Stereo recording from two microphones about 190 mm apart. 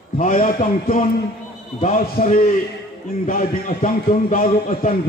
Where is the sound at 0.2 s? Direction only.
45° left (ahead or behind).